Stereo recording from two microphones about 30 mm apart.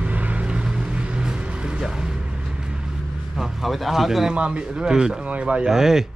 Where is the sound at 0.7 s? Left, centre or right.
Right.